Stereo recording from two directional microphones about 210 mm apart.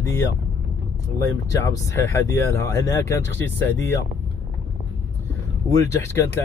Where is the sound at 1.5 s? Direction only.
15° left (ahead or behind).